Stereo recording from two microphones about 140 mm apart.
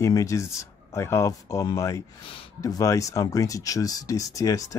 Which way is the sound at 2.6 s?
25° left (ahead or behind).